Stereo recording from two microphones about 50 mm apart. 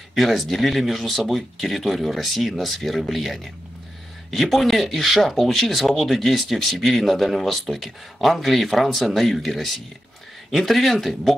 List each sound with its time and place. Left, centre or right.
0.1 s speech: centre